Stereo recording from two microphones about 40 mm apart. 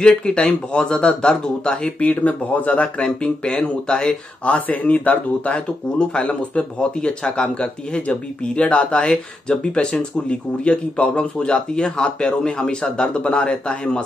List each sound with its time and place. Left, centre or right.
0.0 s speech: left
2.0 s speech: left
3.0 s speech: left
4.5 s speech: left
5.4 s speech: left